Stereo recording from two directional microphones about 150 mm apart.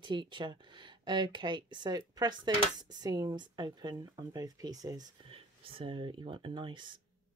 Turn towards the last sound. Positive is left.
turn(degrees=-30)  # may be behind; listen again after turning